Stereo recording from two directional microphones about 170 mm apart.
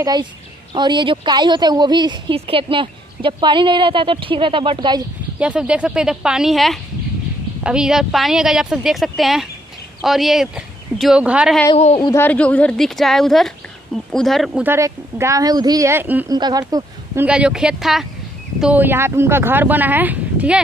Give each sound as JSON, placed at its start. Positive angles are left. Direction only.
{"t": 0.0, "sound": "a woman's voice", "side_deg": -25}
{"t": 5.4, "sound": "a woman's voice", "side_deg": -5}
{"t": 11.7, "sound": "a man's voice", "side_deg": 40}
{"t": 12.0, "sound": "a woman's voice", "side_deg": 15}
{"t": 16.3, "sound": "speech", "side_deg": -25}
{"t": 17.2, "sound": "a woman's voice", "side_deg": -5}